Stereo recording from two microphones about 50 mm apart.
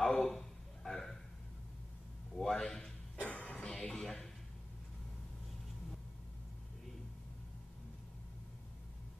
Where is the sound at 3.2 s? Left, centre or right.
Left.